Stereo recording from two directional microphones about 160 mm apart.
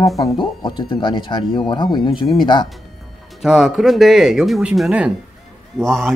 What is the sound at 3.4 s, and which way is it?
Speech, centre (ahead or behind).